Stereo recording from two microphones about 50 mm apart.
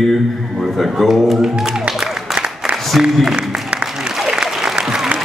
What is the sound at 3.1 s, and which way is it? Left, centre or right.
Speech, centre.